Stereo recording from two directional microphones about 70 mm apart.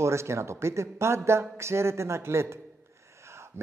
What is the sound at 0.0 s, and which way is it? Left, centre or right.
Speech, right.